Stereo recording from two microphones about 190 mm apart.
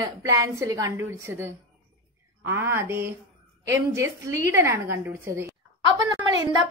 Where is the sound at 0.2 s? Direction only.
15° right (ahead or behind).